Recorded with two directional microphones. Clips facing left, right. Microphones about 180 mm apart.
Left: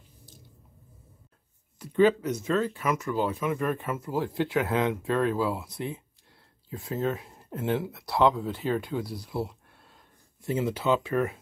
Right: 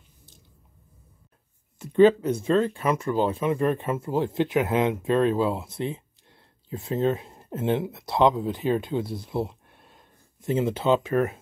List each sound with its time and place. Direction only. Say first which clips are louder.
1.8 s speech: right 5 dB; 25° right (ahead or behind)